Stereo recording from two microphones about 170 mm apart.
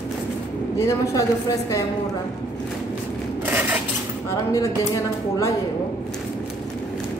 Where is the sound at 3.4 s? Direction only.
10° right (ahead or behind).